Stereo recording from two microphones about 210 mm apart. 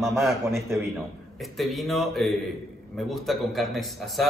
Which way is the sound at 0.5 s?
15° right (ahead or behind).